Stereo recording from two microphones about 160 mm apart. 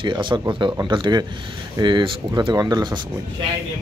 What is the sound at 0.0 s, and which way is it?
Speech, 30° right (ahead or behind).